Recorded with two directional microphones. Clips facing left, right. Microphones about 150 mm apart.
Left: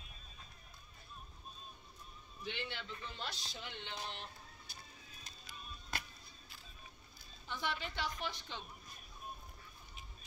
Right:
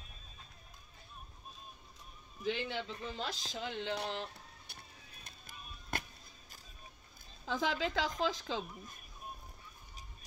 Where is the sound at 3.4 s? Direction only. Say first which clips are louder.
Right 8 dB; 90° right; by 6.6 s 45° right (ahead or behind).